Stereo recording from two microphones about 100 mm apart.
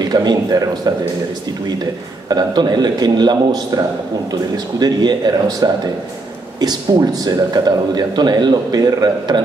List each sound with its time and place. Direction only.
0.0 s a man's voice: 45° right (ahead or behind)
2.2 s a man's voice: 45° right (ahead or behind)
7.2 s a man's voice: 45° right (ahead or behind)